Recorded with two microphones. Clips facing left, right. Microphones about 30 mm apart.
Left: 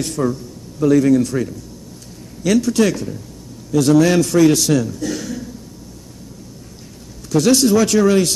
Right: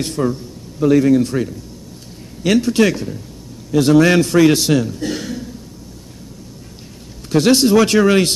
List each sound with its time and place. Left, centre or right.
0.0 s a man's voice: right
7.2 s speech: right
7.7 s a man's voice: right